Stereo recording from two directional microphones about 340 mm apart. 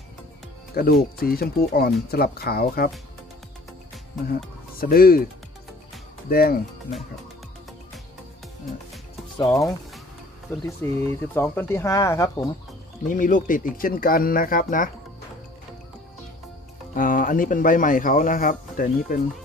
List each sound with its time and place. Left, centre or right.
0.8 s speech: left
4.7 s speech: left
9.4 s speech: centre
13.1 s speech: left
16.9 s speech: left